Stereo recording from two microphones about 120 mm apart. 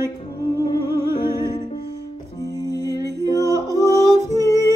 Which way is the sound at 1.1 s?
40° left (ahead or behind).